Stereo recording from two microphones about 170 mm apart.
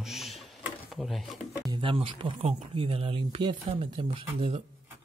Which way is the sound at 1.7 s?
30° right (ahead or behind).